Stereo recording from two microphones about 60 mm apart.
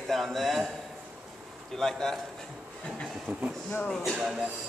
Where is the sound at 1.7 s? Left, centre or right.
Centre.